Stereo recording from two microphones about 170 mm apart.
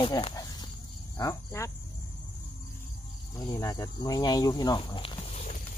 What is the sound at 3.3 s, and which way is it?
Speech, 20° left (ahead or behind).